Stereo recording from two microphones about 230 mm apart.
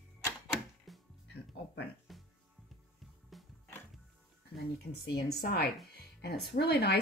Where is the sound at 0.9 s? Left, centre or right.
Centre.